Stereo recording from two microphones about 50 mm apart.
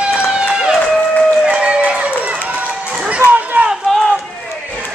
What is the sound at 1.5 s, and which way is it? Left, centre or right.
Run, right.